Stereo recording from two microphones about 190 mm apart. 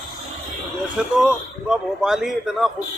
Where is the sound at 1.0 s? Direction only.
5° right (ahead or behind).